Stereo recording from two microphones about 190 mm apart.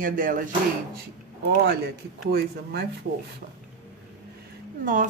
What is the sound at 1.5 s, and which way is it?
Speech, 60° right (ahead or behind).